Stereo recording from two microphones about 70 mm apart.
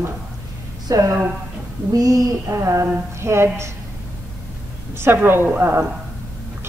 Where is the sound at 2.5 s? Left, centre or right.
Right.